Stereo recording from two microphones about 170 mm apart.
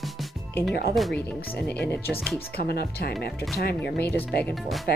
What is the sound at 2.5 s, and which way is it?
Speech, 65° left (ahead or behind).